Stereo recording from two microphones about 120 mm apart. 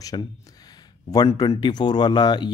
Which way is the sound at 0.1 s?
40° left (ahead or behind).